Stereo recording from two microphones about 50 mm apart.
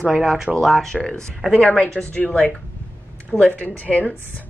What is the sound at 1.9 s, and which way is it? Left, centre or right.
Speech, left.